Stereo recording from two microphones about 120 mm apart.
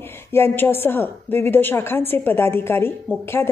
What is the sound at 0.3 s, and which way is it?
A woman's voice, 20° left (ahead or behind).